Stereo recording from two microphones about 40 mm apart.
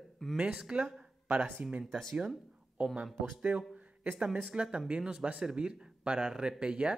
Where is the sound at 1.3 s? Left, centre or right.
Right.